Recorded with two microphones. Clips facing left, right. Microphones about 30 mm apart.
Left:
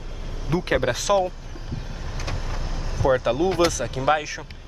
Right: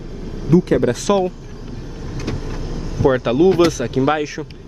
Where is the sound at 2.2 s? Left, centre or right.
Centre.